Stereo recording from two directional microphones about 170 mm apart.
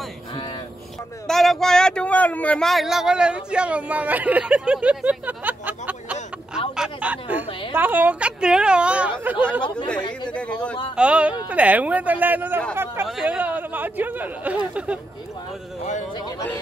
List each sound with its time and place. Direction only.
1.2 s a woman's voice: centre (ahead or behind)
9.9 s speech: 25° left (ahead or behind)
10.3 s speech: 5° left (ahead or behind)
11.0 s speech: 5° right (ahead or behind)